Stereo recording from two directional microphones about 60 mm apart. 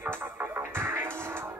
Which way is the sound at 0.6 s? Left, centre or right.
Right.